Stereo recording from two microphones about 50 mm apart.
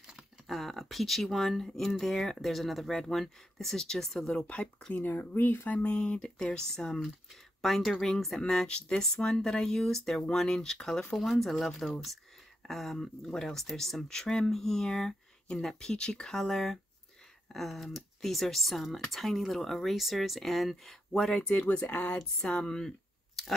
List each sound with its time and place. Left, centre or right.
0.0 s speech: centre
4.5 s speech: left
4.9 s speech: left
5.7 s speech: left; by 21.4 s centre
21.4 s speech: left
22.2 s speech: centre